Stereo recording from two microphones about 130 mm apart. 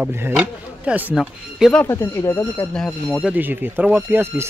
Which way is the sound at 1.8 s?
20° left (ahead or behind).